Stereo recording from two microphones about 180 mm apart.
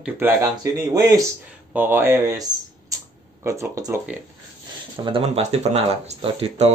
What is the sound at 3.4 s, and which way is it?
Speech, 15° right (ahead or behind).